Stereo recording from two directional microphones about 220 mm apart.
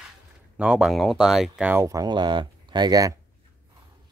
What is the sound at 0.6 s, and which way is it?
Speech, 5° right (ahead or behind).